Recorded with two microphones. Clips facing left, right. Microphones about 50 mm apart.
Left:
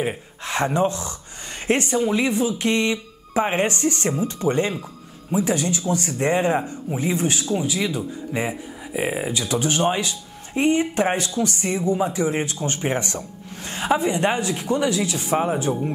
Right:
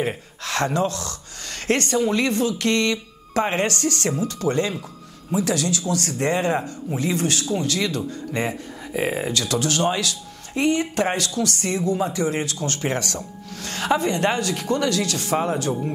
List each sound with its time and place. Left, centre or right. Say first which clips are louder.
0.4 s speech: left 2 dB; centre